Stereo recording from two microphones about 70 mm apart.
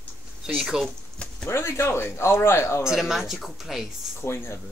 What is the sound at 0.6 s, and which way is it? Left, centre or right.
Speech, centre.